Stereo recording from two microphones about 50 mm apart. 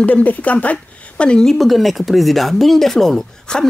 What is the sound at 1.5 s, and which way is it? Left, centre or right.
Speech, centre.